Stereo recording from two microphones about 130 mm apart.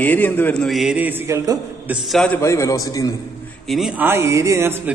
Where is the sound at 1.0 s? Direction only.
15° right (ahead or behind).